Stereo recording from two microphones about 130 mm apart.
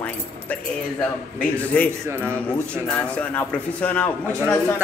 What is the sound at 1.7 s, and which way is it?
Speech, 10° left (ahead or behind).